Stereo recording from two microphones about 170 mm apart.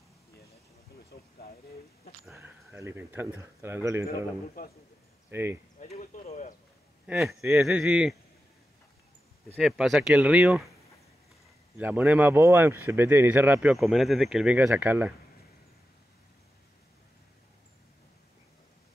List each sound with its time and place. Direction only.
2.7 s speech: 15° right (ahead or behind)
5.3 s speech: 15° right (ahead or behind)
5.8 s speech: 45° left (ahead or behind)
7.1 s speech: centre (ahead or behind)
9.6 s speech: centre (ahead or behind)
11.8 s speech: 10° right (ahead or behind)